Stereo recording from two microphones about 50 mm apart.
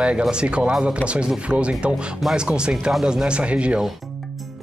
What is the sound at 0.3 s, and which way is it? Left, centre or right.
Speech, centre.